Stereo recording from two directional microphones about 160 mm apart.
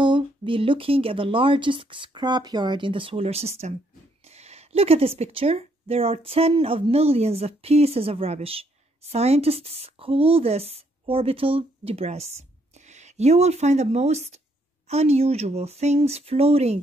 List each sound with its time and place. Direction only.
0.0 s a woman's voice: 30° right (ahead or behind)